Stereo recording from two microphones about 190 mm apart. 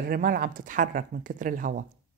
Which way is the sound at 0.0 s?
50° right (ahead or behind).